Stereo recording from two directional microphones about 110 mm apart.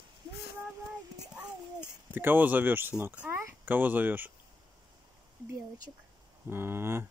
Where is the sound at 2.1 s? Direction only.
15° right (ahead or behind).